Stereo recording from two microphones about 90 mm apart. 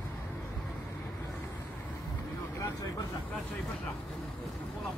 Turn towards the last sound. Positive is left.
turn(degrees=40)  # may be behind; listen again after turning